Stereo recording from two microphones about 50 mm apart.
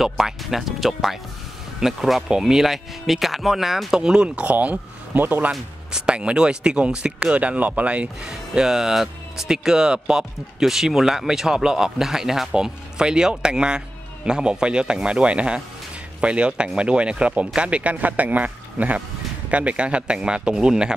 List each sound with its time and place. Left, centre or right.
0.0 s speech: centre
2.2 s speech: centre
4.4 s speech: right
5.5 s speech: centre
8.3 s speech: centre